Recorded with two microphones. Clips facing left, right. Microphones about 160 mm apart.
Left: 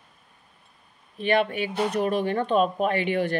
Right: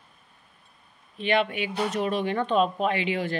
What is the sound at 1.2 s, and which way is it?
Speech, 45° left (ahead or behind).